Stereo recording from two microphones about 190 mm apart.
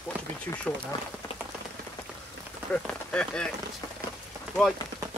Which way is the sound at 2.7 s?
5° left (ahead or behind).